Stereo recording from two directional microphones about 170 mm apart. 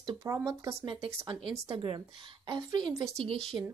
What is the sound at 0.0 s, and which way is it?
Speech, 20° right (ahead or behind).